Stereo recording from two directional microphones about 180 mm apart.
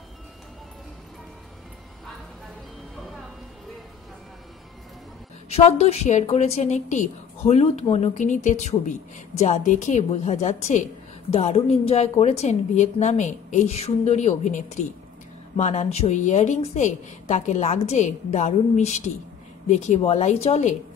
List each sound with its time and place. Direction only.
5.5 s a woman's voice: 35° left (ahead or behind)